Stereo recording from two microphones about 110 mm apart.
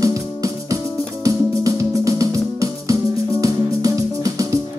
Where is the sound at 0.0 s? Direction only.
30° right (ahead or behind).